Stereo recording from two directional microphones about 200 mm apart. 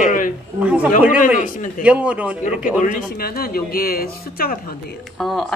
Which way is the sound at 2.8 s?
50° left (ahead or behind).